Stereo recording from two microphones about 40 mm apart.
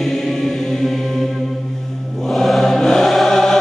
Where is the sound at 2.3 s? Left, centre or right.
Centre.